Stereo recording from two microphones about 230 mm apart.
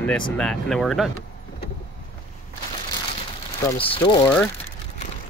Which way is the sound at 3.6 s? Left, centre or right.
Left.